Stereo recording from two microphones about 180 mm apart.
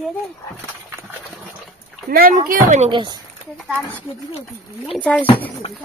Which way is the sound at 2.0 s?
55° right (ahead or behind).